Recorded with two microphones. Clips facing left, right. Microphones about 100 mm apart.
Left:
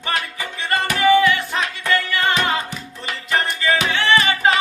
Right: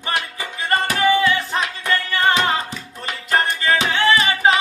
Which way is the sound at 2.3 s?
30° right (ahead or behind).